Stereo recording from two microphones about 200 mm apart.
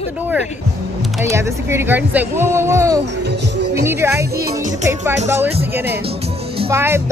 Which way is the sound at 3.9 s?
15° right (ahead or behind).